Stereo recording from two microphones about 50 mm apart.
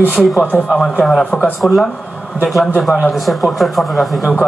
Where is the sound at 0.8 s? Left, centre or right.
Centre.